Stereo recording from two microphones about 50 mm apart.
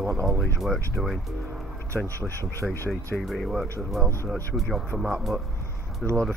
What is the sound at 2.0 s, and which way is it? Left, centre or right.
Speech, right.